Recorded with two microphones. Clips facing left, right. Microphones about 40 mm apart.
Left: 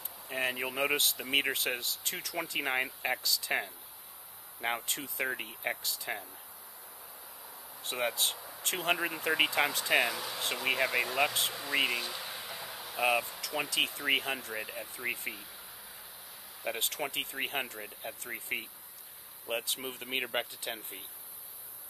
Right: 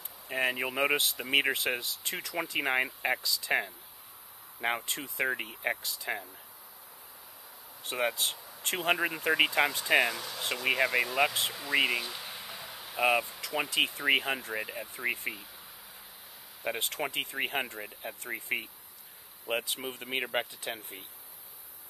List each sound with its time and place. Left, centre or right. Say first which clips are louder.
0.3 s speech: right 3 dB; centre; by 2.7 s right
2.7 s speech: right 3 dB; centre
5.2 s speech: right 4 dB; centre
7.9 s speech: right 2 dB; centre
8.4 s a sound: left 2 dB; centre
8.7 s speech: right 3 dB; centre
11.7 s a sound: right 3 dB; centre
13.0 s speech: right 2 dB; centre
16.6 s speech: right 2 dB; centre
19.8 s speech: right 1 dB; centre